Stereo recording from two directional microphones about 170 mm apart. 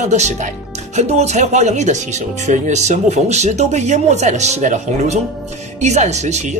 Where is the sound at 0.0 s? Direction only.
45° right (ahead or behind).